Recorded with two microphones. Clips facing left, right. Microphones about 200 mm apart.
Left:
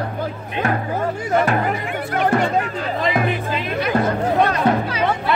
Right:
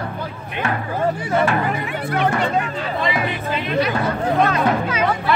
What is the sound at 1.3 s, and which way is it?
Music, 45° left (ahead or behind).